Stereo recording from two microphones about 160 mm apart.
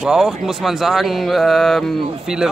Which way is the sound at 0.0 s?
5° right (ahead or behind).